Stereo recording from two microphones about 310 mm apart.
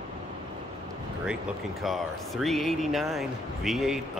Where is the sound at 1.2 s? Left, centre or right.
Centre.